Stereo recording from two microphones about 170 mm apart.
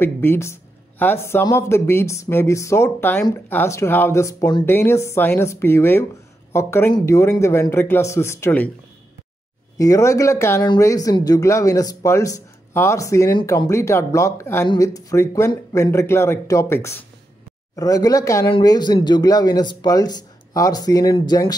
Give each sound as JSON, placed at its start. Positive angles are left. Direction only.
{"t": 0.0, "sound": "speech", "side_deg": 15}
{"t": 9.8, "sound": "a man's voice", "side_deg": 20}